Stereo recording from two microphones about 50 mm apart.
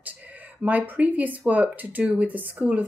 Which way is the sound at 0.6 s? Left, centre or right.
Right.